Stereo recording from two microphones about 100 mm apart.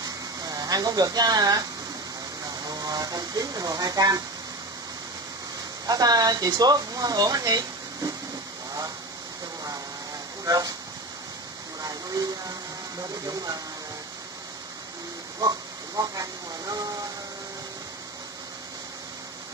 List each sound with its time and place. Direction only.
0.0 s a sound: 40° right (ahead or behind)
2.5 s speech: 40° right (ahead or behind)
5.9 s speech: 40° right (ahead or behind)
10.4 s speech: 40° right (ahead or behind)
11.8 s rain on surface: 40° right (ahead or behind)
13.0 s speech: 40° right (ahead or behind)
16.0 s speech: 35° right (ahead or behind)